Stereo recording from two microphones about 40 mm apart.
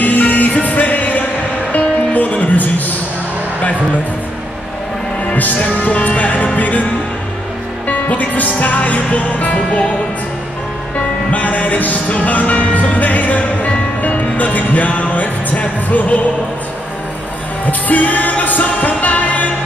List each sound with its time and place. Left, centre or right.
0.0 s music: left
5.3 s music: left
7.8 s music: left
11.2 s music: left
17.6 s music: left